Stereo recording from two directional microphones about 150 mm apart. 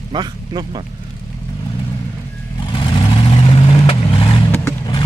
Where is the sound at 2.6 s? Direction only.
35° left (ahead or behind).